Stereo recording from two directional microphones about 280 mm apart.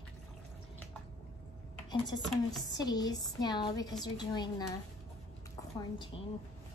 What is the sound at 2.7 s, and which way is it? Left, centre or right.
A woman's voice, centre.